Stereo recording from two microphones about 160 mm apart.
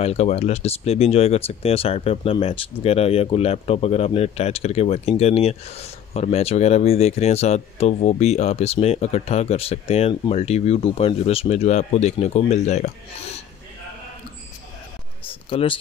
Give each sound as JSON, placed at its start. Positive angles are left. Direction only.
{"t": 0.0, "sound": "speech", "side_deg": 40}
{"t": 15.5, "sound": "speech", "side_deg": 35}